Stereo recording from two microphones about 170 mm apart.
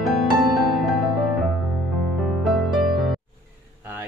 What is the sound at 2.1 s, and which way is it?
Music, centre (ahead or behind).